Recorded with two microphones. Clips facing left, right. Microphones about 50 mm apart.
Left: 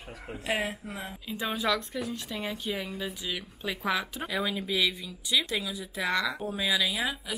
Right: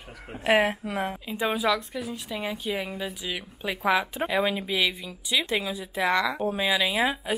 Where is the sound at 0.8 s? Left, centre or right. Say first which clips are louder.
Right 9 dB; right.